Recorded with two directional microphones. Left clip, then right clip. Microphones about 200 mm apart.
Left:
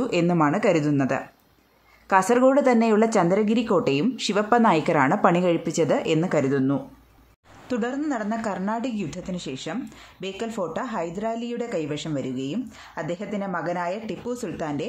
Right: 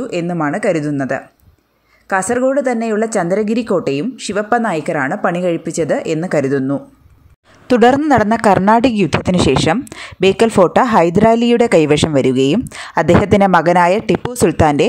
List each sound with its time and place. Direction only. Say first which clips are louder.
0.0 s a woman's voice: right 3 dB; 10° right (ahead or behind)
7.6 s a woman's voice: right 17 dB; 50° right (ahead or behind)